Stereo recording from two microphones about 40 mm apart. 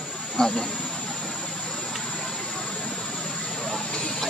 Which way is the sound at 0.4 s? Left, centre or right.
Centre.